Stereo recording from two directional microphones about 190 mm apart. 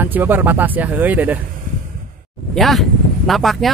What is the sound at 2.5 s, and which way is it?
Speech, centre (ahead or behind).